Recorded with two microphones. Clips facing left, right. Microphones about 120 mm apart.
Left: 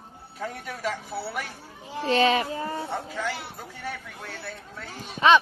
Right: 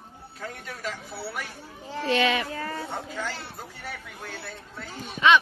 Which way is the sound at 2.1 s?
35° left (ahead or behind).